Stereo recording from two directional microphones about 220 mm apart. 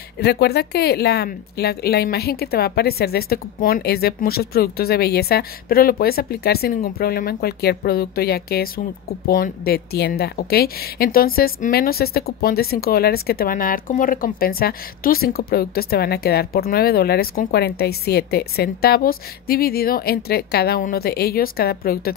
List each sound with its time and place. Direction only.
0.2 s a woman's voice: 45° left (ahead or behind)